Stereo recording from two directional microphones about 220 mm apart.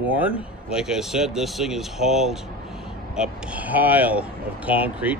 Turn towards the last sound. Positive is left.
turn(degrees=-5)  # may be behind; listen again after turning